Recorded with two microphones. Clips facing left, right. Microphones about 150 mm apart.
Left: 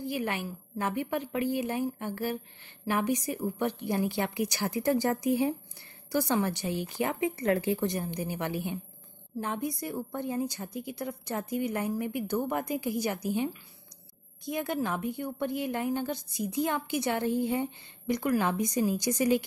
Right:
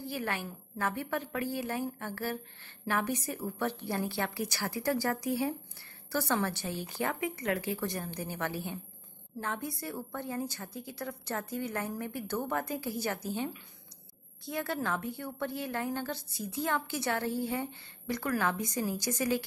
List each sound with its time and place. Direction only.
0.0 s a woman's voice: 15° left (ahead or behind)